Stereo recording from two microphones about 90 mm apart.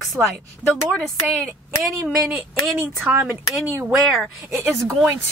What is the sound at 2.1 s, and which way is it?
Speech, centre (ahead or behind).